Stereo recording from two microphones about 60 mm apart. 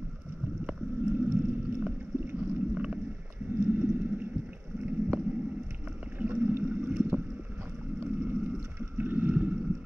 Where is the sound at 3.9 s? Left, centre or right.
Right.